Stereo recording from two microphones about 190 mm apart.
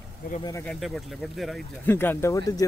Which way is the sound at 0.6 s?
Centre (ahead or behind).